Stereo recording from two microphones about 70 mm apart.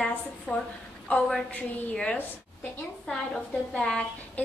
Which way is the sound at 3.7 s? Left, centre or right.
Centre.